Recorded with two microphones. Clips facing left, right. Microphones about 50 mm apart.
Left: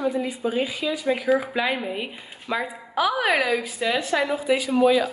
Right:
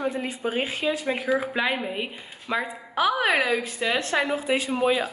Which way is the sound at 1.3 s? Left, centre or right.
Centre.